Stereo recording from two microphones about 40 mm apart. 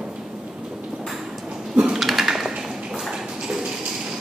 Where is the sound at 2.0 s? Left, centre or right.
Centre.